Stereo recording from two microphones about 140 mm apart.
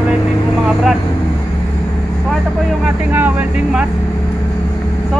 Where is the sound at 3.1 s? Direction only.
10° right (ahead or behind).